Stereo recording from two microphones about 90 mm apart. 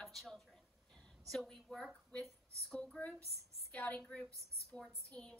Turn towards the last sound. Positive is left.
turn(degrees=10)  # may be behind; listen again after turning